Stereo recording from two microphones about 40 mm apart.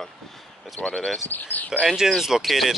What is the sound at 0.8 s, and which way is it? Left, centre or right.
Speech, left.